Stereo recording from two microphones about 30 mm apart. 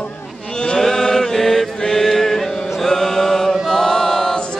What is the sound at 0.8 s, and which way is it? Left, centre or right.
Chant, centre.